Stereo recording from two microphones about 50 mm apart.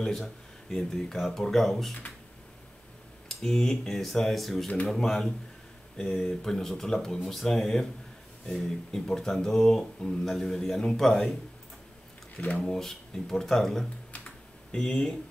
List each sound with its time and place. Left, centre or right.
0.0 s speech: centre
3.3 s speech: centre
12.4 s speech: left
12.6 s speech: centre